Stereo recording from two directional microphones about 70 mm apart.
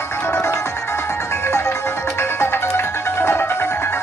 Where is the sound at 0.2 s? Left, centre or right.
Left.